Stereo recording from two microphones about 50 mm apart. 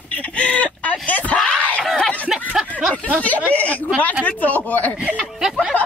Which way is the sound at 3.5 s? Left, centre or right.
Left.